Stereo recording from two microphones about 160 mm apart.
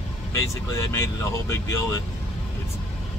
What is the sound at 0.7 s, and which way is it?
Speech, 20° left (ahead or behind).